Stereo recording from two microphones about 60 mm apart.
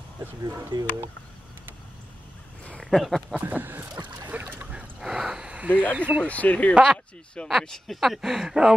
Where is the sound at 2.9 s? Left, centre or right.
Centre.